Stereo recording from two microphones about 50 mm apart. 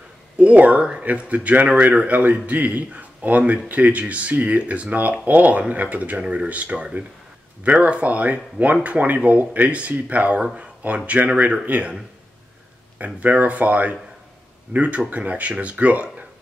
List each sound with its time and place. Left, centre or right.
0.4 s speech: right
10.4 s speech: centre
10.8 s speech: right
13.0 s speech: right